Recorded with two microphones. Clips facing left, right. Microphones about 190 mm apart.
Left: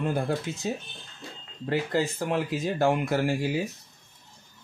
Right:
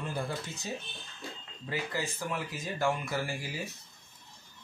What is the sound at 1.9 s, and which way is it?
Speech, 65° left (ahead or behind).